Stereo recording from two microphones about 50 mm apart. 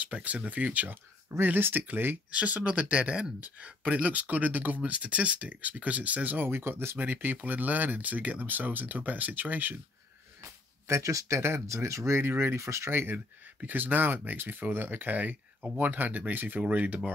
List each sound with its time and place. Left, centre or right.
0.0 s speech: right
2.3 s speech: right
7.0 s speech: right
10.9 s speech: right
12.5 s speech: right
12.9 s speech: right
13.6 s speech: right